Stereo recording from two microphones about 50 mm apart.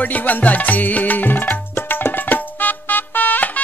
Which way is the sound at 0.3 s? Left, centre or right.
Left.